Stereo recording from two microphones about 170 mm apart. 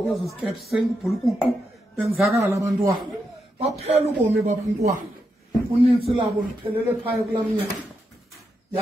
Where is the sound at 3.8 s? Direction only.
40° right (ahead or behind).